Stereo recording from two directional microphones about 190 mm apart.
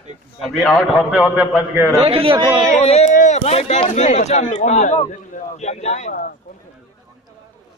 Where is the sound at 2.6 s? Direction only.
35° left (ahead or behind).